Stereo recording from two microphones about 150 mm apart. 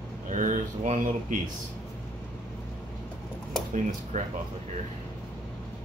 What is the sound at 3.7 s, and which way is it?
Speech, 50° right (ahead or behind).